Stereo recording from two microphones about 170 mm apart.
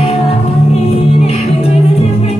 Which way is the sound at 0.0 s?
35° left (ahead or behind).